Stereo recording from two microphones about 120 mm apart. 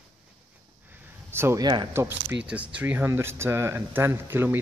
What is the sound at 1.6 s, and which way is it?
Speech, 40° right (ahead or behind).